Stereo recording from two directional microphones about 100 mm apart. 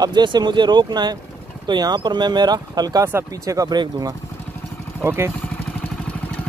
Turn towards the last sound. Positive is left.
turn(degrees=-25)  # may be behind; listen again after turning